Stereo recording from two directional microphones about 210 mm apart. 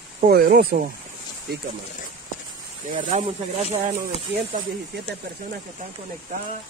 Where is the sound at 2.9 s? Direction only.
40° right (ahead or behind).